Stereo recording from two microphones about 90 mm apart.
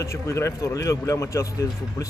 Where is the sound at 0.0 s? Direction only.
30° left (ahead or behind).